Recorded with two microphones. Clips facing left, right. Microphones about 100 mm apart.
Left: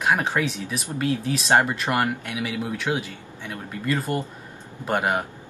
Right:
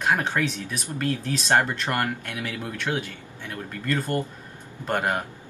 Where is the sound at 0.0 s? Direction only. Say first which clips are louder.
Left 1 dB; 10° left (ahead or behind).